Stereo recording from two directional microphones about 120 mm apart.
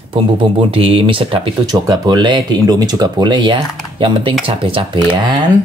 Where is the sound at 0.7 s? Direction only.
50° right (ahead or behind).